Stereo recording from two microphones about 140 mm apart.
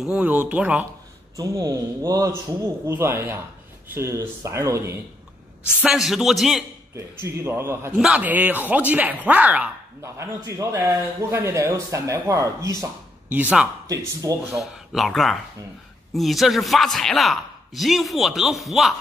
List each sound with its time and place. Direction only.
0.0 s speech: 5° right (ahead or behind)
1.3 s speech: 25° right (ahead or behind)
5.6 s a woman's voice: 15° left (ahead or behind)
5.9 s a man's voice: 5° right (ahead or behind)
7.0 s speech: 20° right (ahead or behind)
13.3 s a man's voice: 10° right (ahead or behind)